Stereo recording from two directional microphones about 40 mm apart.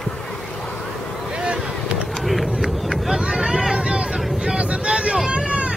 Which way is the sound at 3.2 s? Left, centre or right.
Centre.